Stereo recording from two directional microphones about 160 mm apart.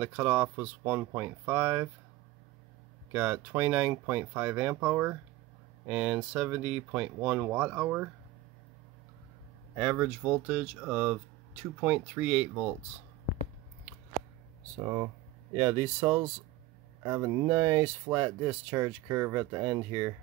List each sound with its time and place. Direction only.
0.0 s speech: 10° right (ahead or behind)
3.1 s speech: 10° right (ahead or behind)
9.8 s speech: 15° right (ahead or behind)
15.5 s speech: 20° right (ahead or behind)